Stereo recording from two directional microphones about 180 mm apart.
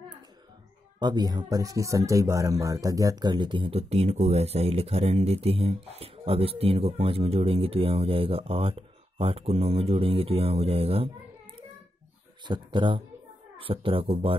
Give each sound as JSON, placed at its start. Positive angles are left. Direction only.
{"t": 0.9, "sound": "speech", "side_deg": -25}
{"t": 12.4, "sound": "speech", "side_deg": -25}